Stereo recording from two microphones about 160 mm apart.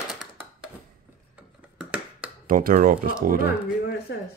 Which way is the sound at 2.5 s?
60° right (ahead or behind).